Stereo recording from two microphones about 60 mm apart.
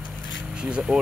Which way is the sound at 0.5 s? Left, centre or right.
Centre.